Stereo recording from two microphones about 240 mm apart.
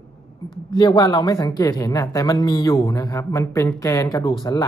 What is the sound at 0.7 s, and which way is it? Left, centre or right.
Speech, centre.